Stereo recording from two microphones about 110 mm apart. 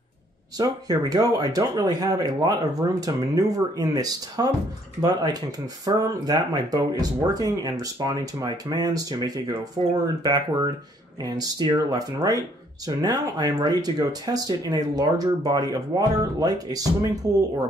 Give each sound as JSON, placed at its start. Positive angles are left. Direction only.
{"t": 0.6, "sound": "speech", "side_deg": -35}